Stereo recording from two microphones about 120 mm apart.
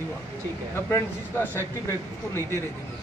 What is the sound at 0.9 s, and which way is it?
Speech, 20° left (ahead or behind).